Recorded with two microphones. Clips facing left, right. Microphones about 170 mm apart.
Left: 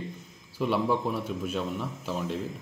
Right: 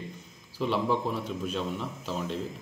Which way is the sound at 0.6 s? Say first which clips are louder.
Left 1 dB; 5° left (ahead or behind).